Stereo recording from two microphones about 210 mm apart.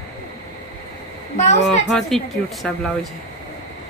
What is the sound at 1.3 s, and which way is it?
Speech, 30° left (ahead or behind).